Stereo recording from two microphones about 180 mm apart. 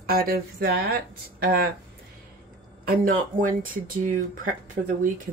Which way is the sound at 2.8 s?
55° right (ahead or behind).